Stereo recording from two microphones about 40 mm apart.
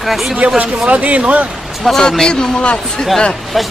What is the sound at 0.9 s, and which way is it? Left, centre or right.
Speech, right.